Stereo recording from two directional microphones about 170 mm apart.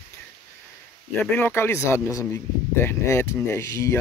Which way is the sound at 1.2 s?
10° left (ahead or behind).